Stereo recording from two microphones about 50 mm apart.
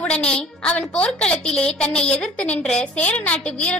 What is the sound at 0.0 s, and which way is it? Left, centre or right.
A woman's voice, left.